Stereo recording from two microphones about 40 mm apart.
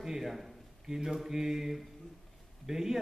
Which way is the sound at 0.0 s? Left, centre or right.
Centre.